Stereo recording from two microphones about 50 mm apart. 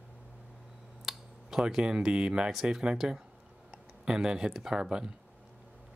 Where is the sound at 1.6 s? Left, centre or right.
Centre.